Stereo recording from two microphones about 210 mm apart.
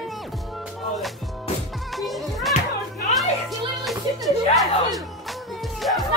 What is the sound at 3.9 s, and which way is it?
Music, centre (ahead or behind).